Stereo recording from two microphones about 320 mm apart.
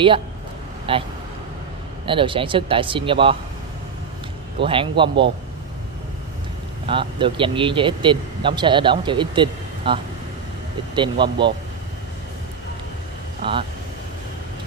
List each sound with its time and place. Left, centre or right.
0.9 s speech: centre
2.0 s speech: centre
4.6 s speech: centre
6.9 s speech: centre
11.0 s speech: centre
13.4 s speech: centre